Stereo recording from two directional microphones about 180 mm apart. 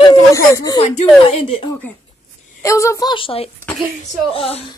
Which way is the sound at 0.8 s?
35° left (ahead or behind).